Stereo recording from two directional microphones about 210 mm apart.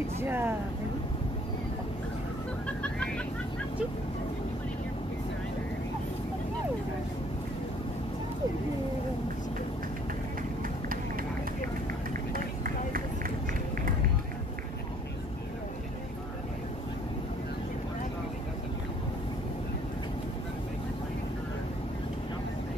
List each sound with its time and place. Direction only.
0.2 s speech: 10° right (ahead or behind)
12.3 s run: 45° right (ahead or behind)